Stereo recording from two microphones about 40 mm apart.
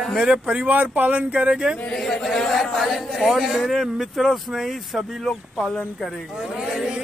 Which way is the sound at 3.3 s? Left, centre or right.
Centre.